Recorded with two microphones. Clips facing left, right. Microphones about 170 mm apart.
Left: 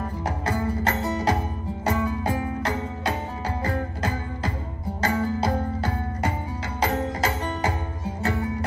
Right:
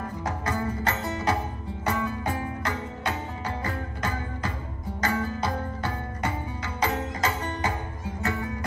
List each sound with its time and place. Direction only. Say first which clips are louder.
0.2 s music: left 2 dB; 35° left (ahead or behind)